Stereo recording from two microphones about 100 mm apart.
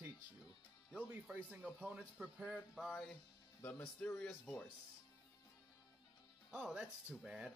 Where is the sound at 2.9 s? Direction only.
5° left (ahead or behind).